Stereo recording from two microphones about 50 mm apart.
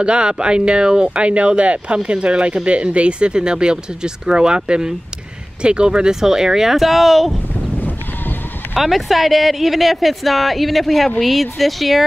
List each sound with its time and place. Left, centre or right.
0.0 s speech: centre
8.7 s speech: centre